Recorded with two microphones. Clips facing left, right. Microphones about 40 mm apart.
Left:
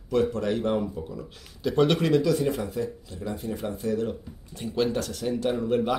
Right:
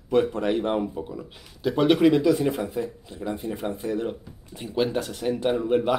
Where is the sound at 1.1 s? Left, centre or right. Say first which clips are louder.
Right 1 dB; centre.